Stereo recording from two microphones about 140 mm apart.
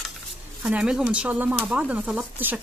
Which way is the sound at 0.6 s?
5° right (ahead or behind).